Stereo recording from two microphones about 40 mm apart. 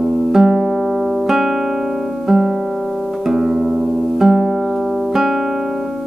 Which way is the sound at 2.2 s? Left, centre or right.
Centre.